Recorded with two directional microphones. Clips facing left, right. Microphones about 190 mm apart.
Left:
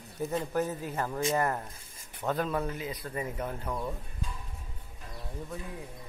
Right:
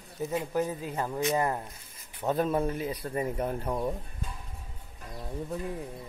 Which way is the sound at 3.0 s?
45° right (ahead or behind).